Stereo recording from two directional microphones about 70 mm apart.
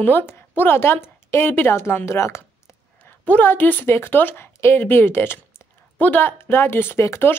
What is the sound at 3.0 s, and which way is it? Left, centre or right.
A woman's voice, left.